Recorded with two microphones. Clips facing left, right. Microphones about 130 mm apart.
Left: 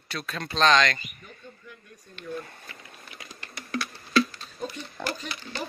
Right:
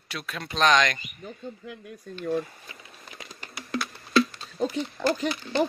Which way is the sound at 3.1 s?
25° right (ahead or behind).